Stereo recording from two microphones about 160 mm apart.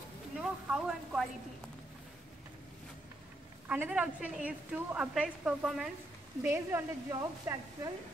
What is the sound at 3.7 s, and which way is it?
A woman's voice, 5° right (ahead or behind).